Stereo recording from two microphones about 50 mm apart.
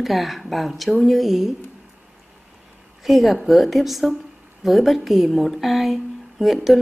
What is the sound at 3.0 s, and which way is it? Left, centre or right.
A woman's voice, centre.